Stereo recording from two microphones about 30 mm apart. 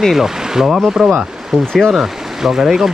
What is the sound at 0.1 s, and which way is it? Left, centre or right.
Speech, centre.